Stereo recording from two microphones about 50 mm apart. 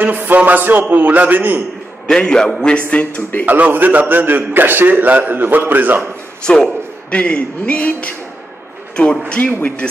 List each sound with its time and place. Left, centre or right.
0.0 s a sound: right
0.5 s a man's voice: right
2.0 s a man's voice: centre
3.2 s a man's voice: left
3.4 s a man's voice: right
6.4 s a man's voice: centre
7.1 s speech: left
9.4 s a man's voice: left